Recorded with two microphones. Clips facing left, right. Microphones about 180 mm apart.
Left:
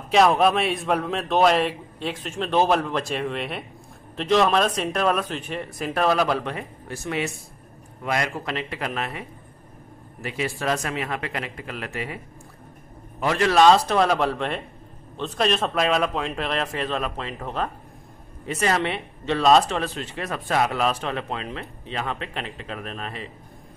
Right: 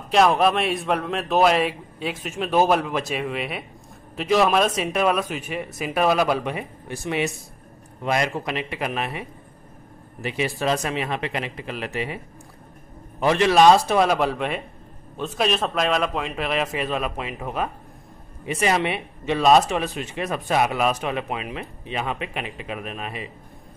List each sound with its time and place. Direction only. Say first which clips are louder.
0.1 s a man's voice: even; centre (ahead or behind); by 9.2 s 15° right (ahead or behind)
10.2 s speech: right 2 dB; 20° right (ahead or behind)
13.2 s a man's voice: right 2 dB; 20° right (ahead or behind)